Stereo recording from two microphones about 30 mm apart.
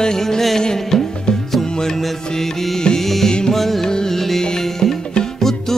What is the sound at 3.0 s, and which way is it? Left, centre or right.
Music, centre.